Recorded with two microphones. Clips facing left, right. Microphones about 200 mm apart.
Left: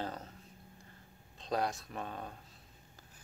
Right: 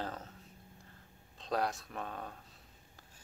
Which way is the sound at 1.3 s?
Centre (ahead or behind).